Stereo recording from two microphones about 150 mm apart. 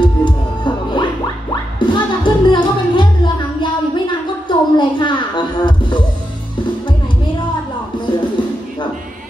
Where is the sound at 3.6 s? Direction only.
30° left (ahead or behind).